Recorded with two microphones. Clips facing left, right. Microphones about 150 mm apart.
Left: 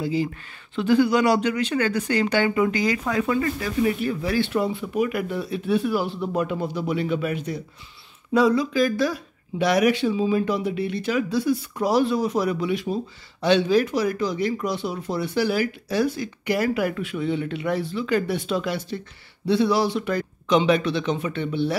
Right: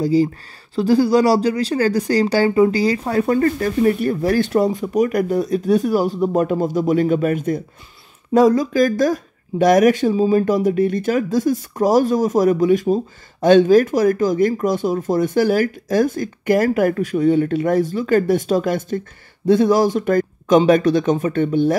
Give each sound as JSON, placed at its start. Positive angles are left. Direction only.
{"t": 0.0, "sound": "speech", "side_deg": -40}